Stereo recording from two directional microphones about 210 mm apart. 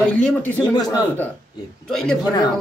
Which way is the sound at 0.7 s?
20° left (ahead or behind).